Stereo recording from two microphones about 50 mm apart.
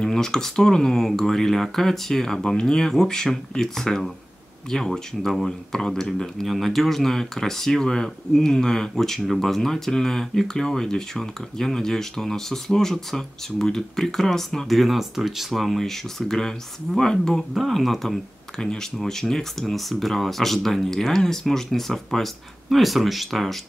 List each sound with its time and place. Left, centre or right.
0.0 s speech: centre
6.4 s speech: centre
18.6 s speech: centre